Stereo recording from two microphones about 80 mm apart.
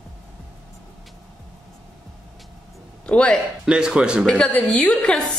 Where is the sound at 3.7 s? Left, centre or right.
Centre.